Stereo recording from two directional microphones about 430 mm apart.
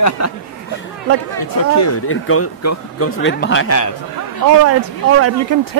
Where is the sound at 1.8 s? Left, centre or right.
Left.